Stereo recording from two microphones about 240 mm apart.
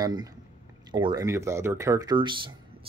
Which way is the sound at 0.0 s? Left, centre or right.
Centre.